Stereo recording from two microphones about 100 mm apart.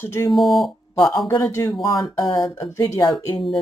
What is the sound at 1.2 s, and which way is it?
Speech, 30° left (ahead or behind).